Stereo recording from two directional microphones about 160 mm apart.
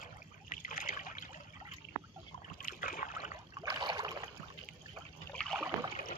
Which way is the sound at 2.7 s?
60° left (ahead or behind).